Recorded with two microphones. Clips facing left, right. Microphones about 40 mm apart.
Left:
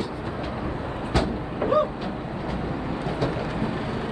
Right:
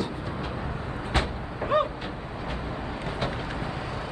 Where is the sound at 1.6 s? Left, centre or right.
Right.